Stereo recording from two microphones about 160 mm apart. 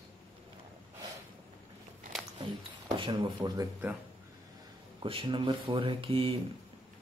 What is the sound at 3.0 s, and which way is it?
Speech, 30° right (ahead or behind).